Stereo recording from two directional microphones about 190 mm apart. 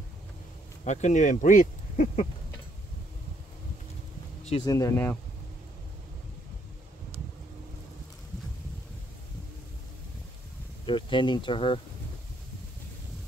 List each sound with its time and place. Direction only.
0.8 s speech: 40° left (ahead or behind)
4.5 s speech: 20° left (ahead or behind)
10.9 s speech: 25° left (ahead or behind)